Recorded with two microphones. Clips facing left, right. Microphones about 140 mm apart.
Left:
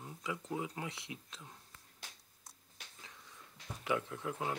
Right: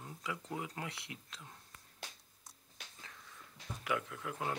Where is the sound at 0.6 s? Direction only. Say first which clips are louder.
Left 2 dB; 20° left (ahead or behind).